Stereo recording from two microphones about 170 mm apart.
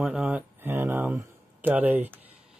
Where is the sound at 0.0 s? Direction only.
5° right (ahead or behind).